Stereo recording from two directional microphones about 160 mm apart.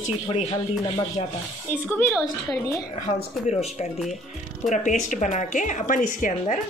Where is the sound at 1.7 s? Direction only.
15° left (ahead or behind).